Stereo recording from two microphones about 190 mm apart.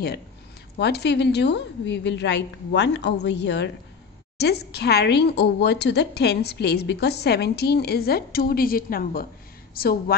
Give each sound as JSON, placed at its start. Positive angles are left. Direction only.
{"t": 0.7, "sound": "a woman's voice", "side_deg": 60}